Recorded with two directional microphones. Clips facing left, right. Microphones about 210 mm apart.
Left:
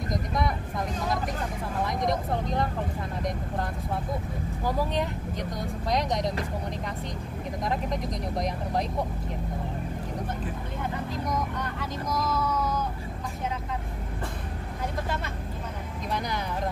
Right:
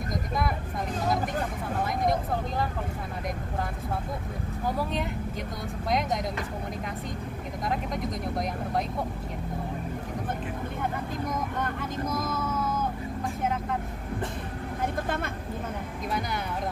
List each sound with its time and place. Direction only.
1.8 s speech: centre (ahead or behind)
5.9 s speech: centre (ahead or behind)
7.6 s speech: centre (ahead or behind)
11.2 s vehicle: 50° right (ahead or behind)